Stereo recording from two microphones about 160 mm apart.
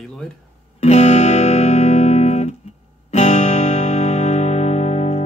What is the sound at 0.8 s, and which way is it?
Music, 45° left (ahead or behind).